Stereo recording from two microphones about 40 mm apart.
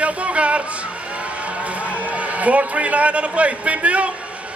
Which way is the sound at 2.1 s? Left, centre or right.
Right.